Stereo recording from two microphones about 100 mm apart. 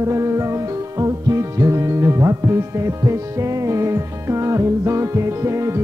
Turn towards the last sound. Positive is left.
turn(degrees=-30)  # may be behind; listen again after turning